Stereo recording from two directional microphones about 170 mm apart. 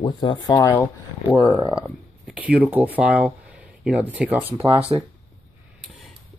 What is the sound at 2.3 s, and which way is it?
Speech, 10° right (ahead or behind).